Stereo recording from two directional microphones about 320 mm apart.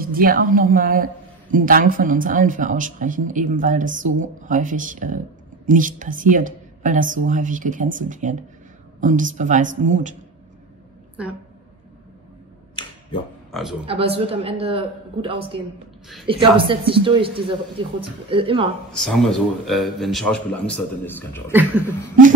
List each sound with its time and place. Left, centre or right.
0.0 s a woman's voice: right
13.5 s speech: centre
13.8 s a woman's voice: centre
18.9 s a man's voice: centre
21.5 s a man's voice: centre